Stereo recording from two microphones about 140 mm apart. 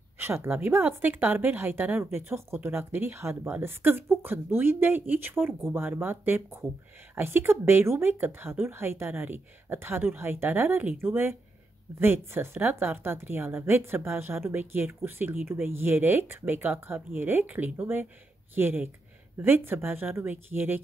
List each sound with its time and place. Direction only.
0.2 s speech: 15° right (ahead or behind)